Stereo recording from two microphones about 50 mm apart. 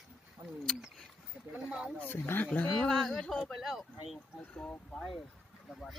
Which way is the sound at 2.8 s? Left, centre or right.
Centre.